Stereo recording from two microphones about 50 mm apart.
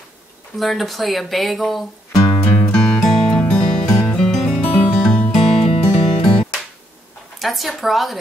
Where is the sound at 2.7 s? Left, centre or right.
Centre.